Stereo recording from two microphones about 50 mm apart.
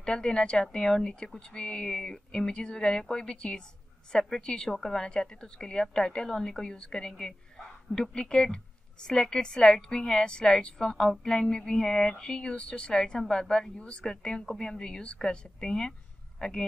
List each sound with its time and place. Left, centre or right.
0.0 s a woman's voice: centre